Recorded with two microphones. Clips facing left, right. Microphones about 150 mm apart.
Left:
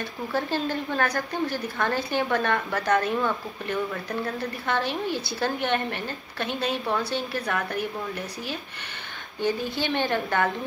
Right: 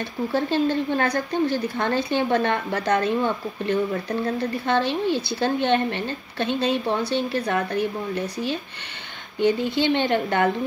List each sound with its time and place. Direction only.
0.3 s a woman's voice: 25° right (ahead or behind)
9.4 s a woman's voice: 20° right (ahead or behind)